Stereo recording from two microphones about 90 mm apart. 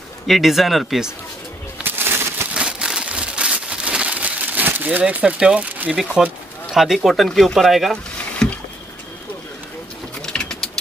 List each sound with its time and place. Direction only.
0.3 s speech: centre (ahead or behind)
1.8 s a sound: 25° right (ahead or behind)
2.5 s a sound: 10° right (ahead or behind)
6.2 s speech: 5° right (ahead or behind)
8.4 s rowboat: 5° left (ahead or behind)
10.2 s bird: 5° left (ahead or behind)